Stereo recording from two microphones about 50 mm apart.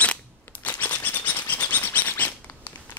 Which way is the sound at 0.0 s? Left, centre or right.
Left.